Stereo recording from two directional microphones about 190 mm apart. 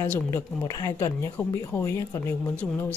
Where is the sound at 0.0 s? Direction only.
10° left (ahead or behind).